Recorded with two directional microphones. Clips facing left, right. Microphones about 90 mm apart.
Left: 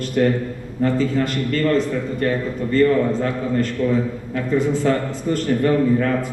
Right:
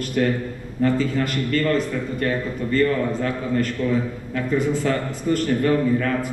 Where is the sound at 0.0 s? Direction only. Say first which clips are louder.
Left 3 dB; 30° left (ahead or behind).